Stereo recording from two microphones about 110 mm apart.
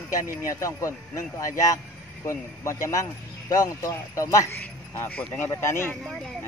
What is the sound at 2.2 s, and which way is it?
Speech, 25° left (ahead or behind).